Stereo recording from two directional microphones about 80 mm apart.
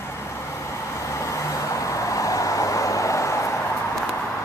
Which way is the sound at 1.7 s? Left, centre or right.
Left.